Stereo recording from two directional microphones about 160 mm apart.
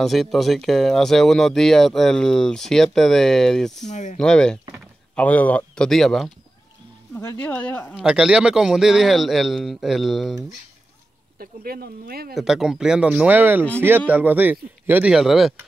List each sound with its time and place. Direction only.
0.0 s speech: centre (ahead or behind)
3.9 s speech: 50° left (ahead or behind)
4.2 s speech: 5° left (ahead or behind)
7.2 s speech: 10° left (ahead or behind)
7.9 s speech: 5° right (ahead or behind)
11.3 s speech: 70° right (ahead or behind)
12.4 s speech: centre (ahead or behind)